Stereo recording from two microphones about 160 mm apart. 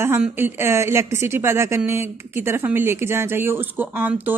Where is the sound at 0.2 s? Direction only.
15° right (ahead or behind).